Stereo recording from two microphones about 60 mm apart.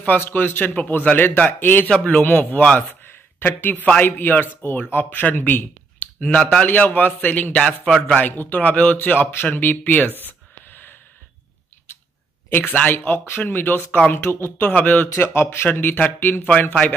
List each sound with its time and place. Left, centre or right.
0.0 s a man's voice: left
2.0 s a man's voice: left
2.9 s a sound: left
4.0 s a man's voice: left
6.2 s speech: centre
6.6 s a man's voice: left
7.5 s speech: centre
8.2 s a man's voice: left
12.4 s a man's voice: left
14.2 s speech: left
14.7 s a man's voice: left
15.1 s a man's voice: left